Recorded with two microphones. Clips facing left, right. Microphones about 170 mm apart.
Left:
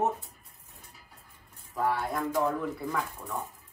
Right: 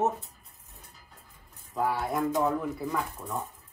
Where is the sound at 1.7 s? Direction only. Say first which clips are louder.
Right 1 dB; centre (ahead or behind).